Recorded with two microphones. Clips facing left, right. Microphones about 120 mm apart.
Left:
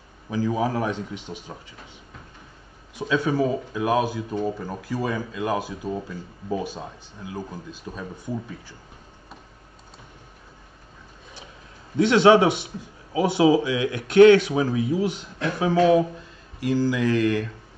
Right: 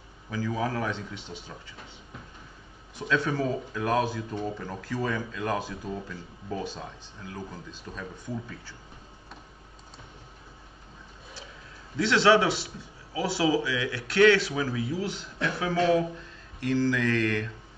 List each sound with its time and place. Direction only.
0.3 s speech: 20° left (ahead or behind)
3.0 s speech: 10° left (ahead or behind)
12.0 s speech: 20° left (ahead or behind)
16.5 s speech: 10° left (ahead or behind)